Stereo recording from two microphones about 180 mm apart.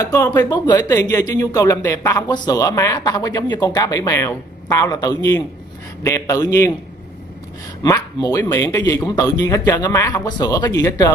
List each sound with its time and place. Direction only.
0.0 s a man's voice: 20° left (ahead or behind)
7.8 s speech: 20° left (ahead or behind)